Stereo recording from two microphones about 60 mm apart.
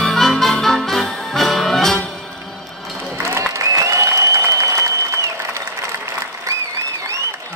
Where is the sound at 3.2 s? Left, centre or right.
Right.